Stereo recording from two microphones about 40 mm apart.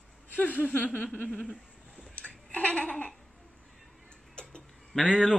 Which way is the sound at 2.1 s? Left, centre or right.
Left.